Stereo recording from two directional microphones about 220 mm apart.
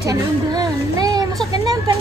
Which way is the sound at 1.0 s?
15° right (ahead or behind).